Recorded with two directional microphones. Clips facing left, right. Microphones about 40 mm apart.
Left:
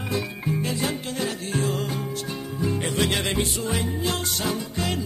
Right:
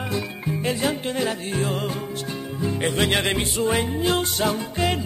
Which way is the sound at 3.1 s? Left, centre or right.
Right.